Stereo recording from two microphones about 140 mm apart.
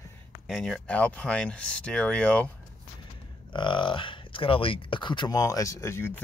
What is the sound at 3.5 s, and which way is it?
Speech, 35° left (ahead or behind).